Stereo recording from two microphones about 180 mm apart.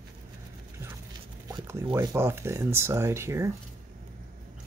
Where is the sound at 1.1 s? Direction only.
20° right (ahead or behind).